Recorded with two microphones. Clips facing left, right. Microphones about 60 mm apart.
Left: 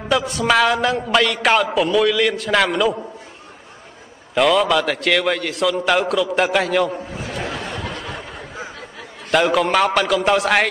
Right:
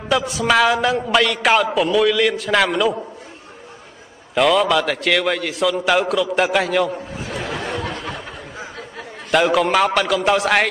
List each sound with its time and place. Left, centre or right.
0.1 s a man's voice: centre
4.4 s a man's voice: centre
7.6 s a sound: right
9.3 s a man's voice: centre